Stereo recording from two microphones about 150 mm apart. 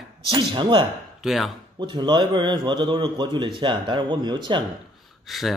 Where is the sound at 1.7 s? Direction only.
30° right (ahead or behind).